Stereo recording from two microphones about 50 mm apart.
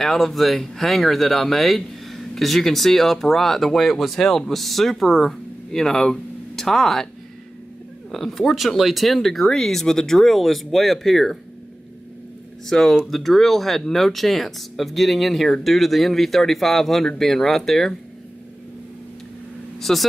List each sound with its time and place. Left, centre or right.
0.0 s speech: centre
8.1 s speech: centre
12.6 s speech: centre
19.8 s speech: centre